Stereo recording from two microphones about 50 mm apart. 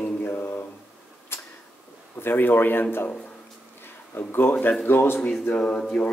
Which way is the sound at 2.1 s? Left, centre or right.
Left.